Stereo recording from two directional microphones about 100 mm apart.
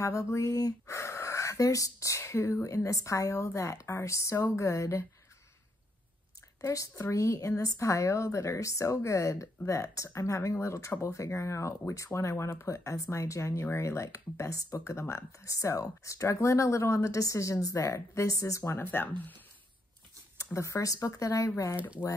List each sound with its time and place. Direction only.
0.0 s speech: 30° left (ahead or behind)
6.6 s speech: 35° left (ahead or behind)
20.3 s speech: 30° left (ahead or behind)